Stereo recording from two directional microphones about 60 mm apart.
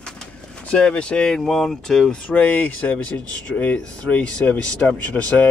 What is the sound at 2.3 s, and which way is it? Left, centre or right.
Speech, left.